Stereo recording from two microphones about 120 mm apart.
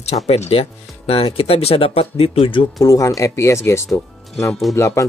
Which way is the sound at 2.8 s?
30° left (ahead or behind).